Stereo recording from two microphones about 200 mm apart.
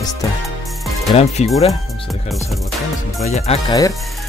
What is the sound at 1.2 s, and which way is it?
Speech, 30° left (ahead or behind).